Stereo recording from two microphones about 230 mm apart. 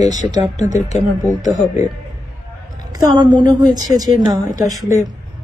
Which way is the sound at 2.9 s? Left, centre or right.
Centre.